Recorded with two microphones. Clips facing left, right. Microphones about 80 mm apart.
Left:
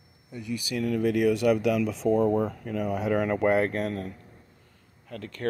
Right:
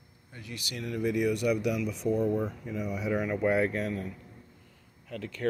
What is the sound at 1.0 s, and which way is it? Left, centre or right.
Speech, left.